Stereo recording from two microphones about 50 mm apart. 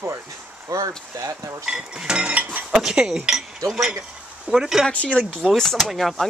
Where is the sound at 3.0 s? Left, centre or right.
Right.